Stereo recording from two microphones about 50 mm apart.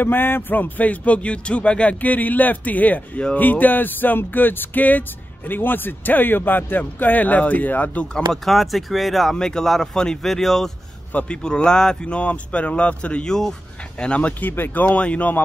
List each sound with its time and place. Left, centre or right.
0.0 s speech: left
8.1 s speech: centre
9.4 s speech: centre
11.2 s speech: centre
13.3 s speech: centre
14.4 s speech: left
14.8 s speech: left